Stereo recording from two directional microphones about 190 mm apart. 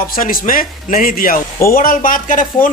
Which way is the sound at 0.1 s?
45° left (ahead or behind).